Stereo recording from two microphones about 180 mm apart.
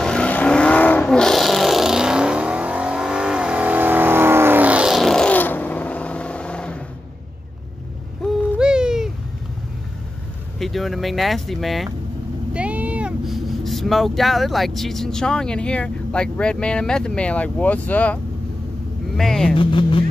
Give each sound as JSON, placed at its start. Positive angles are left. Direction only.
{"t": 0.0, "sound": "vehicle", "side_deg": 5}
{"t": 8.2, "sound": "hoot", "side_deg": -5}
{"t": 10.6, "sound": "speech", "side_deg": 0}
{"t": 19.5, "sound": "speech", "side_deg": 30}